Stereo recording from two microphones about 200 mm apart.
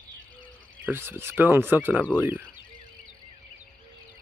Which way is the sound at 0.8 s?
10° right (ahead or behind).